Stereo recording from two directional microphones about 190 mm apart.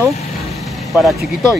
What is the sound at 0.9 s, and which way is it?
Speech, centre (ahead or behind).